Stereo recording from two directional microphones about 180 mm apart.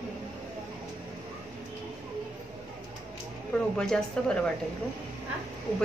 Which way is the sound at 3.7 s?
5° left (ahead or behind).